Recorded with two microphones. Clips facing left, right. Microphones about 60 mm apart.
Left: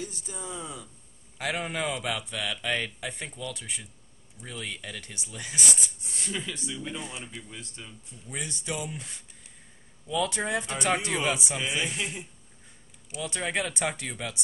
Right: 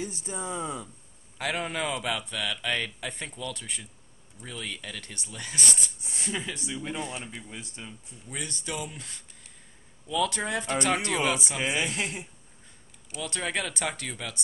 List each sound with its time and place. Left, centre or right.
0.0 s speech: right
1.4 s speech: centre
6.0 s speech: centre
8.3 s speech: centre
11.6 s speech: right
13.1 s speech: centre